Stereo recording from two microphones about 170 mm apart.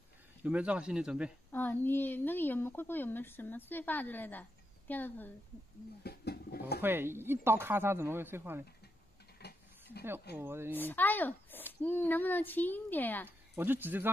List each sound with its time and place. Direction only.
0.4 s speech: 5° right (ahead or behind)
1.5 s speech: 10° left (ahead or behind)
6.0 s guitar: 70° left (ahead or behind)
6.8 s speech: 15° right (ahead or behind)
9.4 s a sound: 70° left (ahead or behind)
10.3 s speech: 15° right (ahead or behind)
10.7 s speech: 10° left (ahead or behind)
13.6 s speech: 10° right (ahead or behind)